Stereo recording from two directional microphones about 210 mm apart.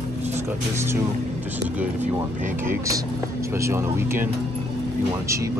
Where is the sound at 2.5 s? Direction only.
15° right (ahead or behind).